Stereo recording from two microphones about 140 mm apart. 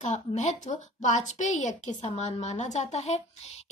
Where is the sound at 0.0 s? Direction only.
55° left (ahead or behind).